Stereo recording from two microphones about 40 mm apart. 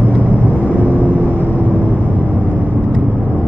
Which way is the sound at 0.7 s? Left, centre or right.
Right.